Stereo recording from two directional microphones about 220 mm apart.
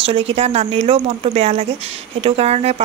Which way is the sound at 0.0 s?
25° right (ahead or behind).